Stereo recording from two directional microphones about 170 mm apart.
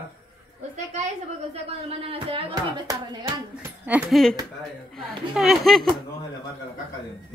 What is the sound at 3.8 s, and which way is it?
Speech, 10° right (ahead or behind).